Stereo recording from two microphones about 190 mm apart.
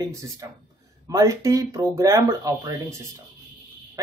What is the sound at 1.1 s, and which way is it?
Speech, 15° right (ahead or behind).